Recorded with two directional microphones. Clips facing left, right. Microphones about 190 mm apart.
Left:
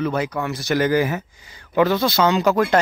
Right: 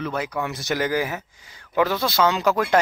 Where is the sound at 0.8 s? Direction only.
10° right (ahead or behind).